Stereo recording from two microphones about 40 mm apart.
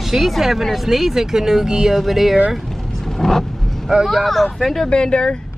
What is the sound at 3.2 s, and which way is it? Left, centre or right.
A man's voice, centre.